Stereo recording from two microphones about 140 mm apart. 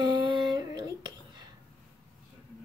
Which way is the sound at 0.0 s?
35° right (ahead or behind).